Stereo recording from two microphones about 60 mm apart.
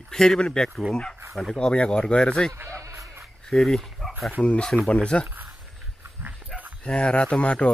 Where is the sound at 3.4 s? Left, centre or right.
Centre.